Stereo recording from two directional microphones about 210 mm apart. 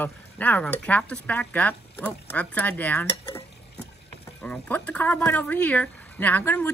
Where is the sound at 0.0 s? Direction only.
10° left (ahead or behind).